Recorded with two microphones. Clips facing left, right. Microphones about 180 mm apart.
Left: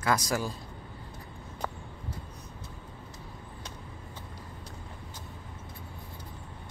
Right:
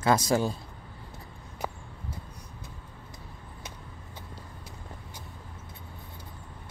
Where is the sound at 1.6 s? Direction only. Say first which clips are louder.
Right 1 dB; 10° right (ahead or behind).